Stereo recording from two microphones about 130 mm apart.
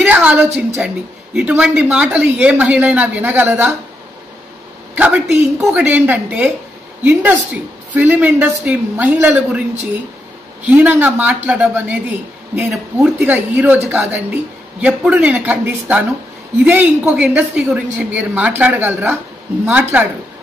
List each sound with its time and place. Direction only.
0.0 s a sound: 10° right (ahead or behind)
0.7 s speech: 10° right (ahead or behind)
4.9 s speech: 10° right (ahead or behind)
10.6 s speech: 10° right (ahead or behind)